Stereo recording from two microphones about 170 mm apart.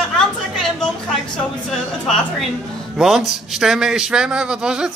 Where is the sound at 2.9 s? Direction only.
Centre (ahead or behind).